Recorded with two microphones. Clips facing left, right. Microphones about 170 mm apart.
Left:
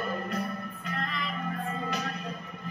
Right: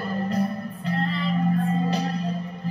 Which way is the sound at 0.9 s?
30° right (ahead or behind).